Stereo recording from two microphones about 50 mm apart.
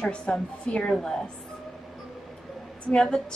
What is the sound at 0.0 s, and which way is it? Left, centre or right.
Speech, centre.